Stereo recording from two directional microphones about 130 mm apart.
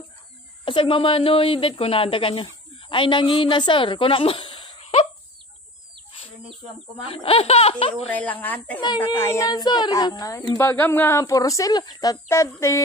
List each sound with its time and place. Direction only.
0.7 s speech: 40° left (ahead or behind)
7.1 s speech: 45° left (ahead or behind)
8.3 s a child's voice: 10° left (ahead or behind)
9.5 s speech: 30° left (ahead or behind)